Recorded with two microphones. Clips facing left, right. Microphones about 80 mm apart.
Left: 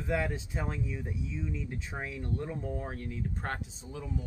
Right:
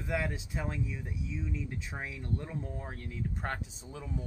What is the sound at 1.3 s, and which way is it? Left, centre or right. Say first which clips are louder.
Speech: right 2 dB; centre.